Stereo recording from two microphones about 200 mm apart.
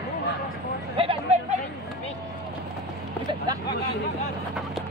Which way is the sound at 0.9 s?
30° right (ahead or behind).